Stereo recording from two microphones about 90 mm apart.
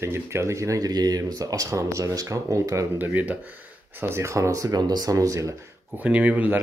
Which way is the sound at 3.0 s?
20° right (ahead or behind).